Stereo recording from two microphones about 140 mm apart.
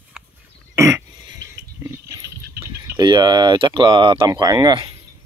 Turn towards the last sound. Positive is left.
turn(degrees=-25)  # may be behind; listen again after turning